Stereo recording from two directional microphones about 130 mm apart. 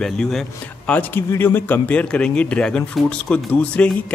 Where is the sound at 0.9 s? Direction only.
15° left (ahead or behind).